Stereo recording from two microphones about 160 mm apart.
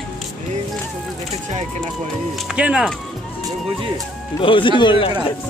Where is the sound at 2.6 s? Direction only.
10° right (ahead or behind).